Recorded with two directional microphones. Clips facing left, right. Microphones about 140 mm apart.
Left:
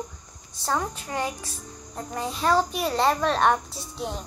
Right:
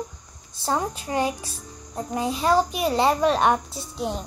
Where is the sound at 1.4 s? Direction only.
5° right (ahead or behind).